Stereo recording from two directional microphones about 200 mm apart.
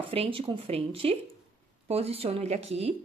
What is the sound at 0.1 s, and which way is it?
A woman's voice, 30° right (ahead or behind).